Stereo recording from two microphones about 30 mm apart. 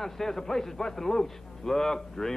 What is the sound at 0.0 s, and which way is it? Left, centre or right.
Speech, centre.